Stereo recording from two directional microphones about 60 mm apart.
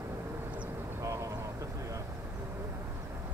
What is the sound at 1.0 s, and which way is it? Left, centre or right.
Vehicle, right.